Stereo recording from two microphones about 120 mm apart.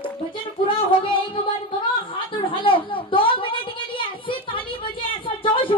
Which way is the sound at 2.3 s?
45° left (ahead or behind).